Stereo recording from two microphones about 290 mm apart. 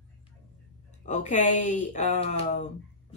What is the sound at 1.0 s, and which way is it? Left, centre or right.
Speech, left.